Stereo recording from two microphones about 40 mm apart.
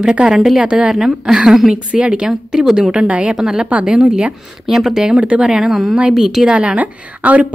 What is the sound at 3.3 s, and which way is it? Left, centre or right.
A woman's voice, centre.